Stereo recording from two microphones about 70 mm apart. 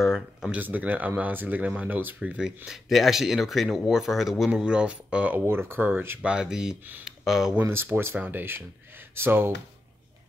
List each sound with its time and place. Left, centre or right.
0.0 s speech: centre
0.5 s speech: right
2.1 s speech: centre
5.5 s speech: right
6.2 s speech: centre
7.6 s speech: right